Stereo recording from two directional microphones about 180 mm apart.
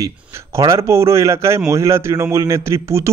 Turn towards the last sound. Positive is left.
turn(degrees=-15)  # may be behind; listen again after turning